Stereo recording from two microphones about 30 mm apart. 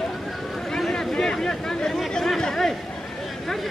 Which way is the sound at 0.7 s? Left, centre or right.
Centre.